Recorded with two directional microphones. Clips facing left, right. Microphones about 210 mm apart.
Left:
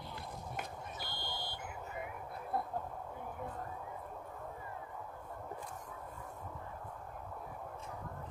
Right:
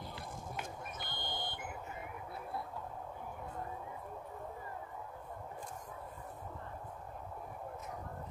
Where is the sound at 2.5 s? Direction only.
50° left (ahead or behind).